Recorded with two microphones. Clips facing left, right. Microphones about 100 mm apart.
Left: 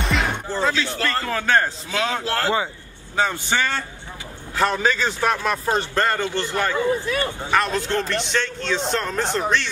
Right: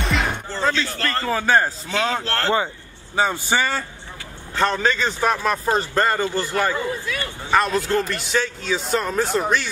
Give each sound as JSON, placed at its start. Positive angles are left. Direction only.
{"t": 0.0, "sound": "music", "side_deg": 0}
{"t": 0.5, "sound": "a man's voice", "side_deg": 5}
{"t": 1.3, "sound": "a man's voice", "side_deg": -5}
{"t": 1.9, "sound": "a man's voice", "side_deg": 5}
{"t": 6.9, "sound": "speech", "side_deg": 25}
{"t": 7.5, "sound": "a man's voice", "side_deg": -5}